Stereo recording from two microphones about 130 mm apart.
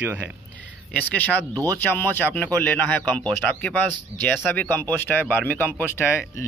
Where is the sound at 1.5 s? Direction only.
30° right (ahead or behind).